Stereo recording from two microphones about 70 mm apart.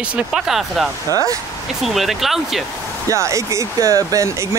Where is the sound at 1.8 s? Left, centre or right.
Centre.